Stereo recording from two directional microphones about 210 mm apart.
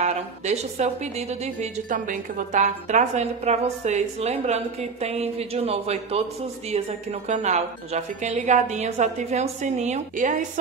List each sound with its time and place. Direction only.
0.0 s a woman's voice: 30° right (ahead or behind)
7.2 s a woman's voice: 35° right (ahead or behind)